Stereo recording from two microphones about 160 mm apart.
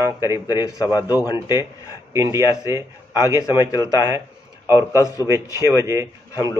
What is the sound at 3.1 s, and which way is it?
Speech, 20° left (ahead or behind).